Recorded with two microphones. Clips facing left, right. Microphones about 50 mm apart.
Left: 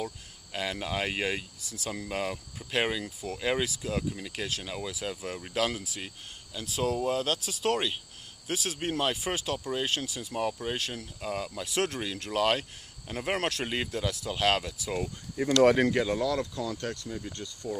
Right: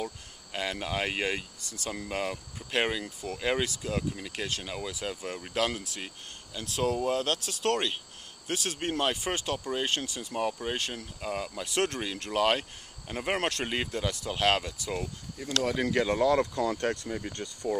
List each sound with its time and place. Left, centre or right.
0.0 s speech: centre
15.6 s speech: left
16.1 s speech: right
16.6 s speech: right